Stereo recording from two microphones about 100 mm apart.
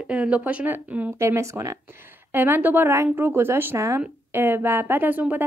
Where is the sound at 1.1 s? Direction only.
30° right (ahead or behind).